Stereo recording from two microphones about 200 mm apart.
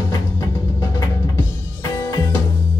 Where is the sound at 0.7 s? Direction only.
20° left (ahead or behind).